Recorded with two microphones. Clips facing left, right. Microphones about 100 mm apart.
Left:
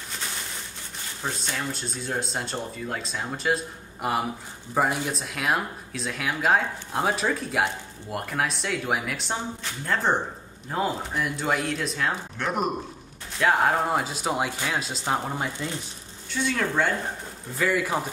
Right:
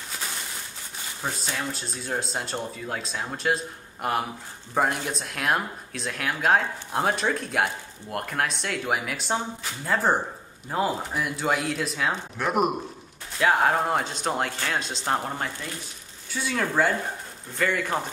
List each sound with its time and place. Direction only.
1.2 s speech: centre (ahead or behind)
15.4 s speech: 20° left (ahead or behind)
16.3 s speech: 5° right (ahead or behind)